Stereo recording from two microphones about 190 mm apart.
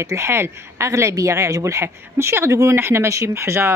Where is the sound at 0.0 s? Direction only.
15° right (ahead or behind).